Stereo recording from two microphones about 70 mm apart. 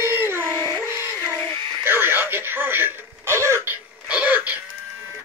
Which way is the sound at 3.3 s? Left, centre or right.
Right.